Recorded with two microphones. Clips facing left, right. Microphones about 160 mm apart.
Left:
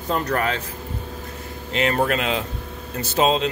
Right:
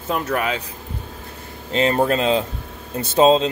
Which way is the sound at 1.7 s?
30° right (ahead or behind).